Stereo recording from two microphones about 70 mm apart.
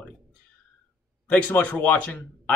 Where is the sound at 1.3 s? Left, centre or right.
Left.